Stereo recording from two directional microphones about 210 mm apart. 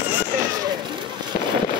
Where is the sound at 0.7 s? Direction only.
20° right (ahead or behind).